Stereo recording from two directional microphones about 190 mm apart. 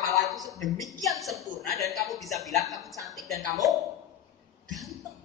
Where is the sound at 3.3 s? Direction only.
15° left (ahead or behind).